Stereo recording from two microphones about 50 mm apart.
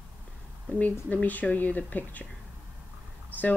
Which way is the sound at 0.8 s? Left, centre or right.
Left.